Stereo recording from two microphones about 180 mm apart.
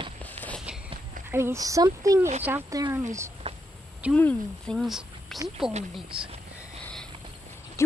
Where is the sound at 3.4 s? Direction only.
35° right (ahead or behind).